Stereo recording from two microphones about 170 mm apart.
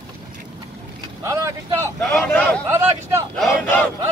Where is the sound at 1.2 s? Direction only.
20° right (ahead or behind).